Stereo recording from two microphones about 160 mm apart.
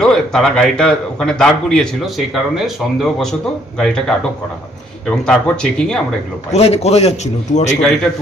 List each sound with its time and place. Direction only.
0.0 s a man's voice: 5° left (ahead or behind)
6.5 s a man's voice: 40° left (ahead or behind)